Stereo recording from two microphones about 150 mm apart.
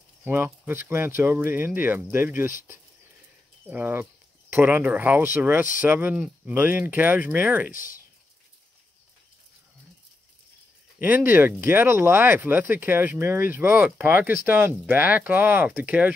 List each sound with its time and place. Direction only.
0.2 s speech: 15° right (ahead or behind)
3.6 s speech: 10° right (ahead or behind)
7.7 s speech: 65° left (ahead or behind)
11.0 s speech: 10° right (ahead or behind)